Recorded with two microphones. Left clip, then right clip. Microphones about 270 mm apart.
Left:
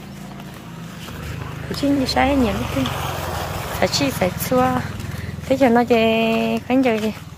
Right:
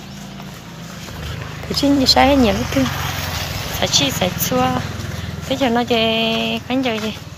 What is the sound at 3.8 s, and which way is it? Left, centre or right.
Speech, centre.